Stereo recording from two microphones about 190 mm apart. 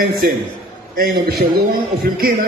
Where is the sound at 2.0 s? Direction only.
55° right (ahead or behind).